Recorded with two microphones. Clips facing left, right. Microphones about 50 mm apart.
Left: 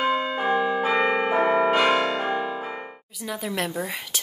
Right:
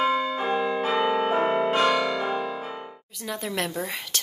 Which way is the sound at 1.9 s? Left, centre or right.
Left.